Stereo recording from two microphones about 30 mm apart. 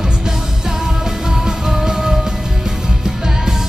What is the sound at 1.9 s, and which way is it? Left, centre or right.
Music, centre.